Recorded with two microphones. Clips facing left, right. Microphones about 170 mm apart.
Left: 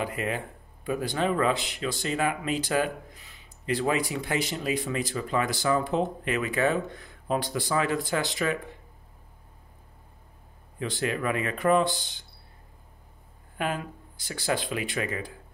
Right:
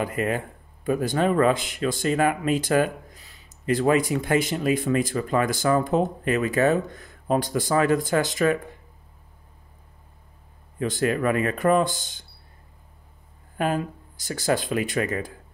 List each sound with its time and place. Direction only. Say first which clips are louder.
0.0 s speech: right 5 dB; 50° right (ahead or behind)
10.8 s speech: right 6 dB; 45° right (ahead or behind)
13.6 s speech: right 6 dB; 40° right (ahead or behind)